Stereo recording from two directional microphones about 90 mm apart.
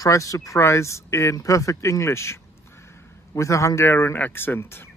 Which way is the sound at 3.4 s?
35° left (ahead or behind).